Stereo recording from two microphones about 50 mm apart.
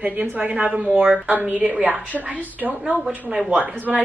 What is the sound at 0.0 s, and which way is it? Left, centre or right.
A woman's voice, right.